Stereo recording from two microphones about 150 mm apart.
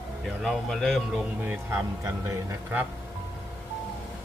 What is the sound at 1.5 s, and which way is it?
Speech, 15° right (ahead or behind).